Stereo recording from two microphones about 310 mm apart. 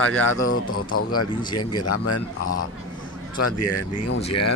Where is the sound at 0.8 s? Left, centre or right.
Left.